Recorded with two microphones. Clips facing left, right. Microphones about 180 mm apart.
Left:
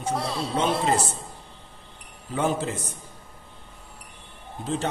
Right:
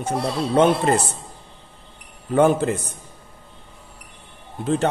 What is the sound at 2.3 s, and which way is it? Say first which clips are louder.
Speech: right 9 dB; 60° right (ahead or behind).